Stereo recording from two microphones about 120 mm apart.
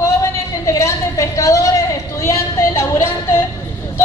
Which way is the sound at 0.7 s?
25° left (ahead or behind).